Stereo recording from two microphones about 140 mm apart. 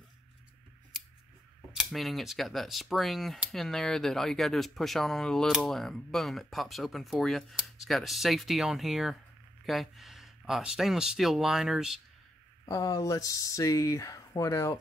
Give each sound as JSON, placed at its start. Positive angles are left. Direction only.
{"t": 1.8, "sound": "speech", "side_deg": 0}
{"t": 12.6, "sound": "speech", "side_deg": 25}